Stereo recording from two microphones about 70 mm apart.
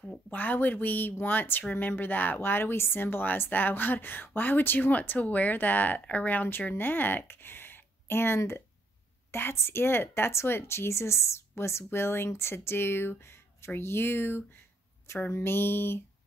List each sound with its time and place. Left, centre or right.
0.3 s a woman's voice: left